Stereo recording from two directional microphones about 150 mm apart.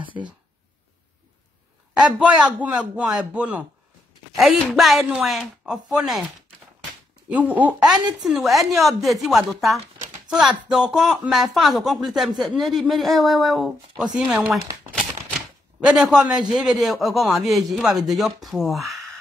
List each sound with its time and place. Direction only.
0.0 s a sound: 35° right (ahead or behind)
2.0 s speech: 5° right (ahead or behind)
7.2 s speech: 10° right (ahead or behind)